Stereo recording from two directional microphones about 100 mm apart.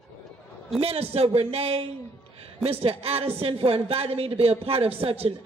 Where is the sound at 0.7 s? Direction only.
85° right.